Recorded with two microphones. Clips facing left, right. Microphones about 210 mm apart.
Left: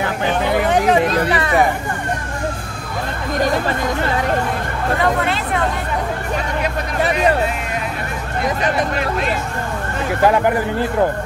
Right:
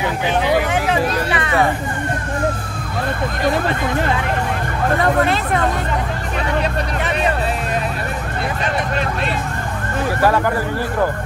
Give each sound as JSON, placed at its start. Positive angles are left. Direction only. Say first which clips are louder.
{"t": 0.7, "sound": "hubbub", "louder": "left 4 dB", "side_deg": 35}
{"t": 10.2, "sound": "speech", "louder": "left 3 dB", "side_deg": 20}